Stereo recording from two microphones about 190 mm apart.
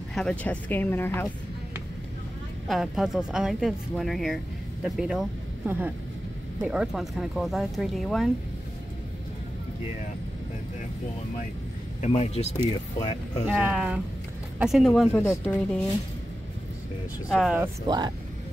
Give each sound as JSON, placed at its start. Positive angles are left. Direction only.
{"t": 0.1, "sound": "speech", "side_deg": 5}
{"t": 2.7, "sound": "speech", "side_deg": 0}
{"t": 12.0, "sound": "speech", "side_deg": 35}
{"t": 13.5, "sound": "speech", "side_deg": -5}
{"t": 17.3, "sound": "speech", "side_deg": 0}
{"t": 17.8, "sound": "speech", "side_deg": -20}